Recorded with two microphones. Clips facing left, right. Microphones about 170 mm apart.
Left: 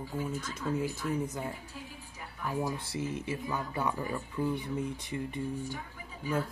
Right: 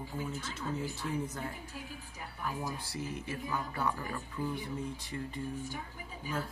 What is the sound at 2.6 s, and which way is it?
Speech, 25° left (ahead or behind).